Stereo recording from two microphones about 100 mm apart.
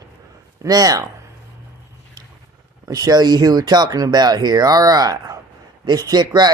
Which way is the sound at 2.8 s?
40° right (ahead or behind).